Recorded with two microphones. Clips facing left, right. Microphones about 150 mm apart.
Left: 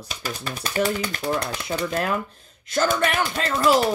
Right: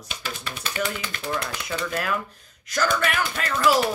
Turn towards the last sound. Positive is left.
turn(degrees=30)  # may be behind; listen again after turning